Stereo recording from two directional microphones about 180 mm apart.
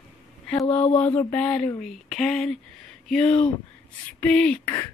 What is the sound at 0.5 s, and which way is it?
Speech, 15° left (ahead or behind).